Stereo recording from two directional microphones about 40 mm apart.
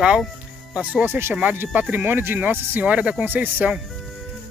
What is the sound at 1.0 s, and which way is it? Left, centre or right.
Speech, right.